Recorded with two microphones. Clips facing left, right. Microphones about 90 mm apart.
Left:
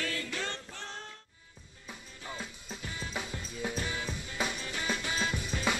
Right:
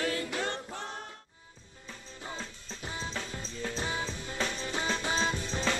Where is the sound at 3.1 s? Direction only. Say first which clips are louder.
Even; 15° left (ahead or behind).